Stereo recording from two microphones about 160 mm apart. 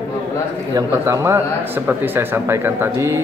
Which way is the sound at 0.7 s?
20° right (ahead or behind).